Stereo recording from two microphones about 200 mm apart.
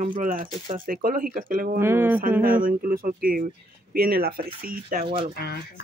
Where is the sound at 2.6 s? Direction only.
45° right (ahead or behind).